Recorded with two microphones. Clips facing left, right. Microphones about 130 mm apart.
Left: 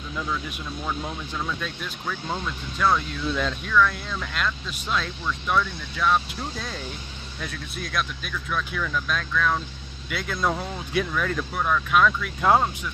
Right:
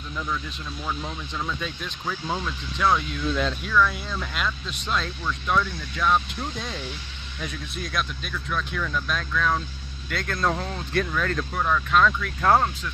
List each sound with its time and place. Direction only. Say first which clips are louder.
0.8 s speech: left 1 dB; centre (ahead or behind)